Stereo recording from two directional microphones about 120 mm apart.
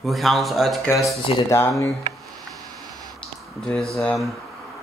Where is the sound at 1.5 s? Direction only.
20° left (ahead or behind).